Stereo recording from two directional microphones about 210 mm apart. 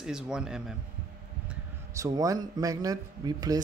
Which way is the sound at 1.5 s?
15° right (ahead or behind).